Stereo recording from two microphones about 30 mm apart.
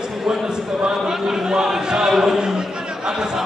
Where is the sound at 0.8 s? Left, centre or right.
Right.